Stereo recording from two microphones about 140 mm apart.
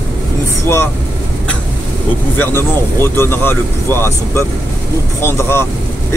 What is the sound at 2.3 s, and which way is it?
Speech, 15° left (ahead or behind).